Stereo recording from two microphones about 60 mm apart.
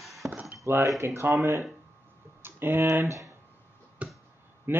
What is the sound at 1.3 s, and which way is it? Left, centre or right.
Speech, right.